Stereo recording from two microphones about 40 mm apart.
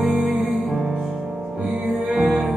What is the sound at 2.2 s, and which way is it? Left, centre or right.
Music, centre.